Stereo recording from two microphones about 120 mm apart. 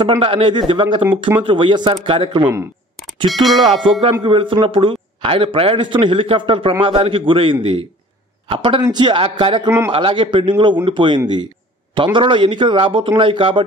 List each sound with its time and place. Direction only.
0.0 s speech: 45° right (ahead or behind)
3.3 s speech: centre (ahead or behind)
3.9 s speech: 50° right (ahead or behind)